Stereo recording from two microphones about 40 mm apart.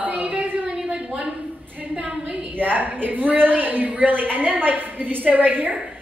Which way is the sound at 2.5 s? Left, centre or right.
Right.